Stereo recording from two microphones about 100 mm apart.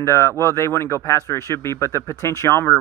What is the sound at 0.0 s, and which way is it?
Speech, 30° left (ahead or behind).